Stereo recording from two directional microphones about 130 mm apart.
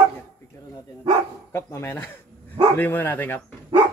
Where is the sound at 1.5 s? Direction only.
20° left (ahead or behind).